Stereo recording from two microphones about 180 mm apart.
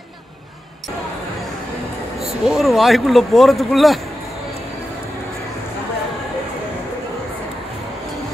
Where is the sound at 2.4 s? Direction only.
Centre (ahead or behind).